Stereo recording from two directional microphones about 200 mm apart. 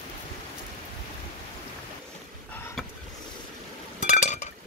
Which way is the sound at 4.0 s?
35° left (ahead or behind).